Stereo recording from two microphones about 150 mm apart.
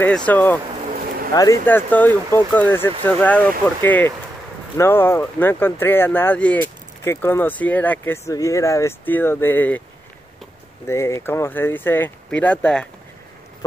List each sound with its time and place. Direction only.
0.0 s speech: 10° left (ahead or behind)
1.3 s speech: 25° left (ahead or behind)
1.7 s speech: 10° left (ahead or behind)
10.9 s speech: 20° left (ahead or behind)